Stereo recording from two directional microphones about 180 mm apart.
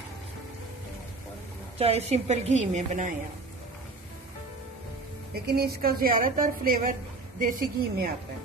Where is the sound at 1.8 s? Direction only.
35° right (ahead or behind).